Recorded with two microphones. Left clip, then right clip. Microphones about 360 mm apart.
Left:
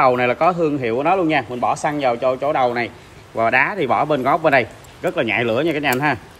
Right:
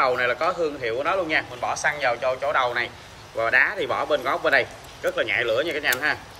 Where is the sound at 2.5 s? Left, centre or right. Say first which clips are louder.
Left 4 dB; centre.